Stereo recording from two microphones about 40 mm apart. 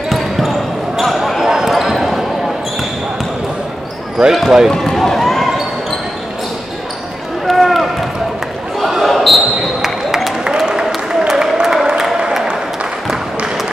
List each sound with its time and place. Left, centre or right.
0.9 s basketball bounce: centre
1.4 s basketball bounce: centre
4.3 s speech: centre
4.6 s basketball bounce: centre
7.4 s run: centre
9.1 s basketball bounce: centre
9.8 s basketball bounce: centre
11.2 s a sound: centre